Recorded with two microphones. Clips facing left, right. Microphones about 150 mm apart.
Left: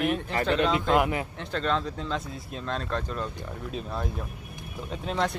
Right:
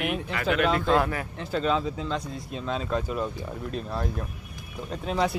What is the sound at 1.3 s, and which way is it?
Speech, 5° right (ahead or behind).